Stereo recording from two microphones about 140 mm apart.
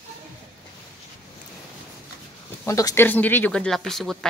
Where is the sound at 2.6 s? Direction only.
20° left (ahead or behind); by 4.3 s centre (ahead or behind).